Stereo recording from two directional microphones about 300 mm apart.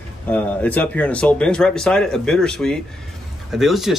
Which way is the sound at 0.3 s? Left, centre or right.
Centre.